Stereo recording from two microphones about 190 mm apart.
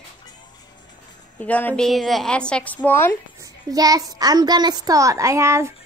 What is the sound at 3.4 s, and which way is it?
A child's voice, 20° right (ahead or behind).